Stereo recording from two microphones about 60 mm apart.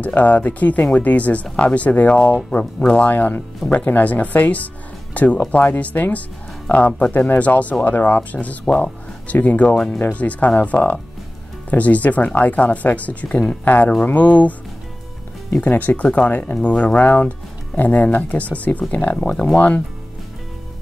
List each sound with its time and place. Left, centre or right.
0.0 s speech: left
3.1 s speech: left
15.5 s speech: left